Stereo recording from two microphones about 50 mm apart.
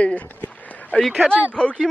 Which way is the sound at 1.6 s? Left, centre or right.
Centre.